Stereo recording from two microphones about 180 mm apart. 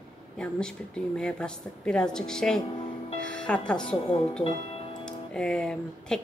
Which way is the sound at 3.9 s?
35° left (ahead or behind).